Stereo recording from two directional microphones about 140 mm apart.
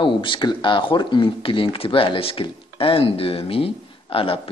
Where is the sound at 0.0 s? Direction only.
35° left (ahead or behind).